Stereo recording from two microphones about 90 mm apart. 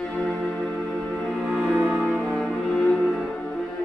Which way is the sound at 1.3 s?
5° right (ahead or behind).